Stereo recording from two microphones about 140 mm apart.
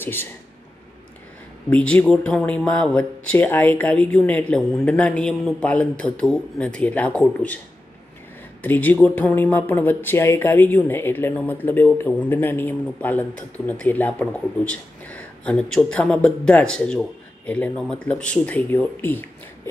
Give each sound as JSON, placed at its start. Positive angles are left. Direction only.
{"t": 0.0, "sound": "speech", "side_deg": 15}
{"t": 1.7, "sound": "speech", "side_deg": 10}
{"t": 8.6, "sound": "speech", "side_deg": 15}